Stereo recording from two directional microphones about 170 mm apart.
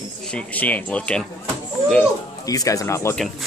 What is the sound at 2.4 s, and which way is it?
Speech, 20° left (ahead or behind).